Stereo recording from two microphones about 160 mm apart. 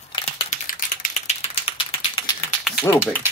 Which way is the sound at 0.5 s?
60° left (ahead or behind).